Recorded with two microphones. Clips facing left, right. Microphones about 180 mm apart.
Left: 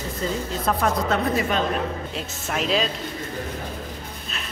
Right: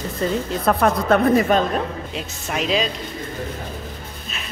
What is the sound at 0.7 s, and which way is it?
Speech, 60° right (ahead or behind).